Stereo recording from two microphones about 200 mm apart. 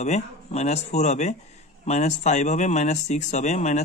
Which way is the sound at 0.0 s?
35° left (ahead or behind).